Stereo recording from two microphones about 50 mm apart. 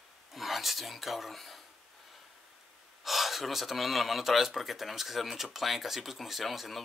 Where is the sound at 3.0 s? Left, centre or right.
Centre.